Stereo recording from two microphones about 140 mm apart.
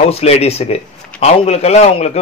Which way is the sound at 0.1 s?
50° left (ahead or behind).